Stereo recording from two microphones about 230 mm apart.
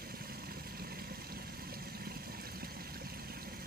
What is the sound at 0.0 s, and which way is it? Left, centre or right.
Vehicle, right.